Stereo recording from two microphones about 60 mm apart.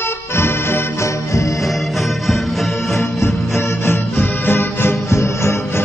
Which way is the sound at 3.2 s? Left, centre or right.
Left.